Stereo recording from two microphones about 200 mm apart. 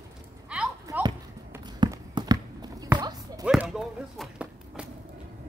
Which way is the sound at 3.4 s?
5° right (ahead or behind).